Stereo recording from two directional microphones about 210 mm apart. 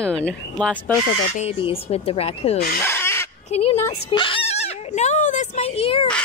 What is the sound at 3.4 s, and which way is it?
Speech, 30° left (ahead or behind).